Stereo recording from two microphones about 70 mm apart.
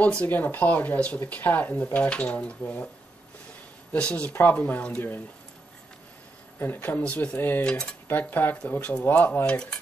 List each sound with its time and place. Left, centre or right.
0.0 s speech: centre
2.0 s speech: centre
3.9 s speech: centre
6.6 s speech: left
7.6 s speech: centre
8.1 s speech: left